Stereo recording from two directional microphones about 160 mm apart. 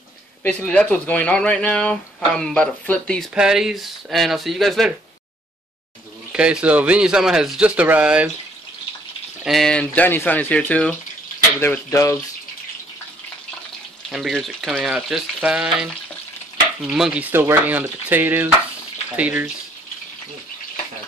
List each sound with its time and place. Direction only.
0.4 s speech: 10° left (ahead or behind)
3.3 s speech: 5° right (ahead or behind)
6.3 s speech: 5° right (ahead or behind)
9.4 s speech: centre (ahead or behind); by 12.2 s 20° left (ahead or behind)
14.1 s speech: centre (ahead or behind)